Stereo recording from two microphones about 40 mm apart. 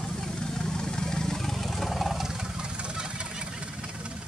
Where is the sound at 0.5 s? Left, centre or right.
Centre.